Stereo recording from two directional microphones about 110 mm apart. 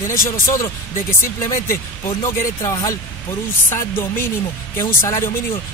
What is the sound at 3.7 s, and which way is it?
Speech, 25° left (ahead or behind).